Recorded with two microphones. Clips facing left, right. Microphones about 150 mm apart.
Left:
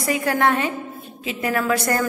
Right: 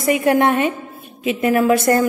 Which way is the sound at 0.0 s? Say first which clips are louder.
Right 5 dB; 20° right (ahead or behind).